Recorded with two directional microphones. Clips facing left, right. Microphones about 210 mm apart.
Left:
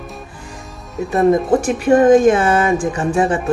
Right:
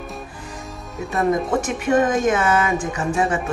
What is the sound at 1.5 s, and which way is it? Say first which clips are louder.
Speech: left 6 dB; 30° left (ahead or behind).